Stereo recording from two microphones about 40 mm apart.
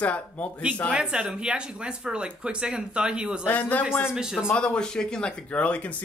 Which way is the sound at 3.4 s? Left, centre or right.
Left.